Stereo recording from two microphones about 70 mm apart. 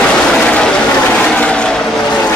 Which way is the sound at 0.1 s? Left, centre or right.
Centre.